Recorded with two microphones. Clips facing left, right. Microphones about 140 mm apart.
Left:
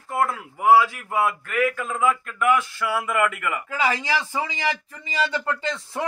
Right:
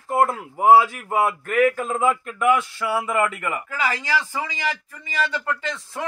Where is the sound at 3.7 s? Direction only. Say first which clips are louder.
Left 1 dB; 20° left (ahead or behind).